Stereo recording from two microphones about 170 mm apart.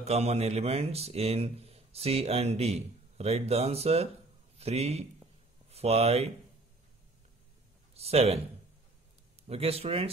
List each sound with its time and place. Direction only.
0.0 s speech: 40° right (ahead or behind)
7.9 s speech: 35° right (ahead or behind)
9.5 s speech: 35° right (ahead or behind)